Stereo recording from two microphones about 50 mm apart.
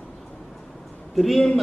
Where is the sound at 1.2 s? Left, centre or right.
Centre.